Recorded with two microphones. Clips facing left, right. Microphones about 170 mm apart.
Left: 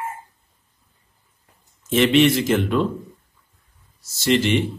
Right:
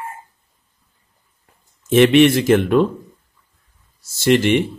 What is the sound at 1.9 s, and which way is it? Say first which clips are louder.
Speech: right 5 dB; 55° right (ahead or behind).